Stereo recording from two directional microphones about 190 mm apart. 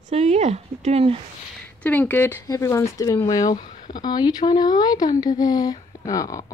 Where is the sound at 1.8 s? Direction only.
10° left (ahead or behind).